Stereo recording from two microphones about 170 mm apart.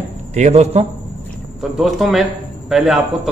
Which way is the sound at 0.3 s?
40° right (ahead or behind).